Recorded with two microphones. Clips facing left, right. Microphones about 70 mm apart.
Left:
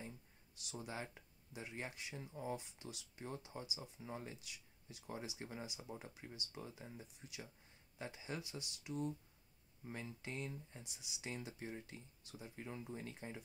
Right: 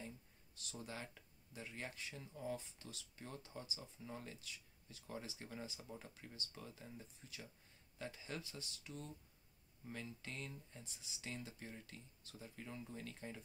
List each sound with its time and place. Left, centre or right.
0.7 s speech: centre
2.1 s speech: left
2.5 s speech: centre